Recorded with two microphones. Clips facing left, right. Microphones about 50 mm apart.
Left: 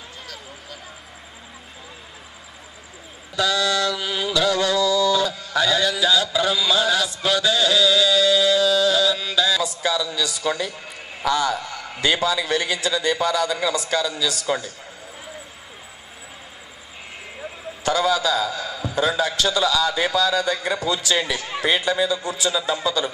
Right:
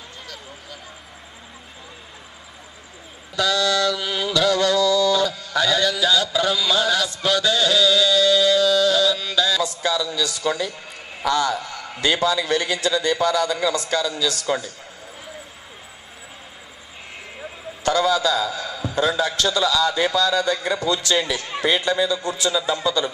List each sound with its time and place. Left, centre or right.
3.3 s speech: centre
4.0 s a man's voice: centre
4.3 s music: centre
10.1 s a man's voice: centre
17.8 s a man's voice: centre
18.6 s a sound: centre
18.9 s a man's voice: centre